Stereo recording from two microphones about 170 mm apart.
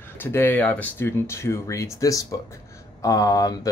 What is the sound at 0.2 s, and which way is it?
Speech, 10° left (ahead or behind).